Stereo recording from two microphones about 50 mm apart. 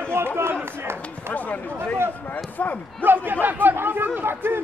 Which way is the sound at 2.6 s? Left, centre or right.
Left.